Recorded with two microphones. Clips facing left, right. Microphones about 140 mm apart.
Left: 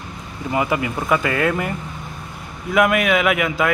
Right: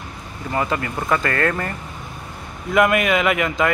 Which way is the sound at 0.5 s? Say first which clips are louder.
Left 2 dB; 10° left (ahead or behind).